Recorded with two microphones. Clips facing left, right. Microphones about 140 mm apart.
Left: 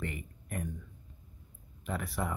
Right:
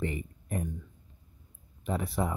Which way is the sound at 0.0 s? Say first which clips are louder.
Right 6 dB; 30° right (ahead or behind).